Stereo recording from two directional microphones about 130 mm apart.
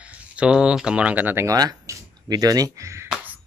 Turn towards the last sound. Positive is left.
turn(degrees=-25)  # may be behind; listen again after turning